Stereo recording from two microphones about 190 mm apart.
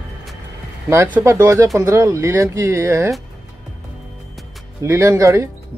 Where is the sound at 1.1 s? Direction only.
15° right (ahead or behind).